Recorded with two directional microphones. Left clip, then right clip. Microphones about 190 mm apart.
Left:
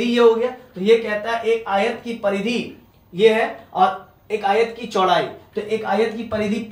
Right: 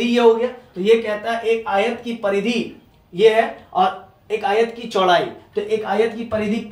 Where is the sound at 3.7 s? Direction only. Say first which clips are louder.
Even; 30° right (ahead or behind).